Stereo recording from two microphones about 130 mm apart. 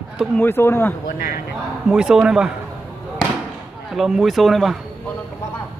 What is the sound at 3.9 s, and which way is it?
Speech, centre (ahead or behind).